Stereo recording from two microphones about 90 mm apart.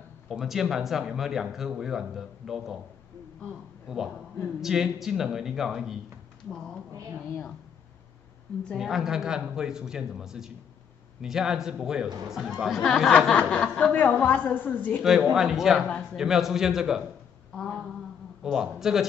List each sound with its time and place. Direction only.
0.3 s speech: 5° right (ahead or behind)
3.8 s a man's voice: 5° right (ahead or behind)
8.7 s a man's voice: 5° right (ahead or behind)
13.3 s chuckle: 15° left (ahead or behind)
13.9 s a woman's voice: 20° left (ahead or behind)
15.0 s speech: 5° right (ahead or behind)
17.6 s a sound: 5° left (ahead or behind)
18.4 s speech: 5° right (ahead or behind)